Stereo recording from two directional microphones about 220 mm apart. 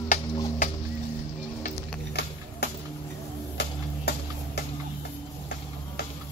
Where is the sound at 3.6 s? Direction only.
45° left (ahead or behind).